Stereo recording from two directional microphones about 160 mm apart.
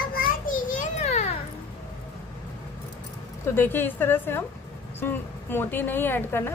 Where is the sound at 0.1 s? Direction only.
60° left (ahead or behind); by 1.3 s 45° left (ahead or behind).